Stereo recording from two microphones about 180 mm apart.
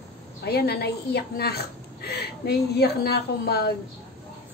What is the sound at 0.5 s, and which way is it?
A woman's voice, 65° left (ahead or behind).